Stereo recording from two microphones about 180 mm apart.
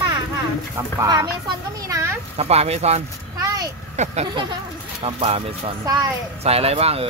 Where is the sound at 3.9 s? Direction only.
40° right (ahead or behind).